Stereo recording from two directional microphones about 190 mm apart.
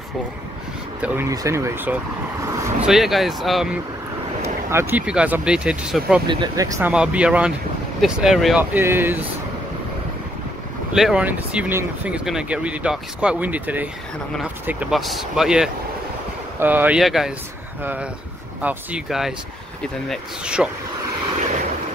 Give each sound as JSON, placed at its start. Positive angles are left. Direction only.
{"t": 1.0, "sound": "speech", "side_deg": -15}
{"t": 2.9, "sound": "speech", "side_deg": 0}
{"t": 4.4, "sound": "speech", "side_deg": -15}
{"t": 6.2, "sound": "speech", "side_deg": -20}
{"t": 6.9, "sound": "speech", "side_deg": -5}
{"t": 10.9, "sound": "speech", "side_deg": -5}
{"t": 18.6, "sound": "speech", "side_deg": -10}